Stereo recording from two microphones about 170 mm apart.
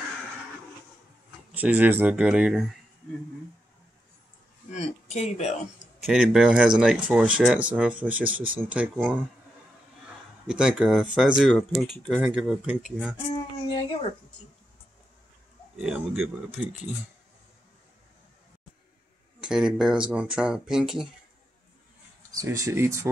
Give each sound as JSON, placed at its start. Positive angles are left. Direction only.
{"t": 1.5, "sound": "speech", "side_deg": -10}
{"t": 4.6, "sound": "a man's voice", "side_deg": 40}
{"t": 6.0, "sound": "speech", "side_deg": -5}
{"t": 10.4, "sound": "speech", "side_deg": -5}
{"t": 13.7, "sound": "speech", "side_deg": 35}
{"t": 15.8, "sound": "speech", "side_deg": -5}
{"t": 19.4, "sound": "speech", "side_deg": -5}
{"t": 22.3, "sound": "speech", "side_deg": -20}